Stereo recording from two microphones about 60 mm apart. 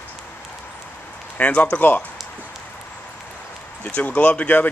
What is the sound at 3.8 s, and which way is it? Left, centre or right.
Speech, left.